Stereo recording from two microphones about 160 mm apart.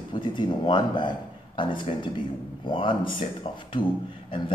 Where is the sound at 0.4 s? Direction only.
30° left (ahead or behind).